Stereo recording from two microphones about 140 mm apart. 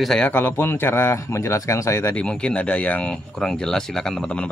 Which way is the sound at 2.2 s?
5° left (ahead or behind).